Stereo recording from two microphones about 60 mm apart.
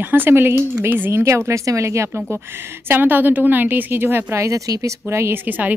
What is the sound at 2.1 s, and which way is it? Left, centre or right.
A woman's voice, right.